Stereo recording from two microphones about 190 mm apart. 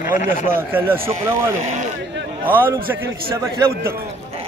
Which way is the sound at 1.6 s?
40° right (ahead or behind).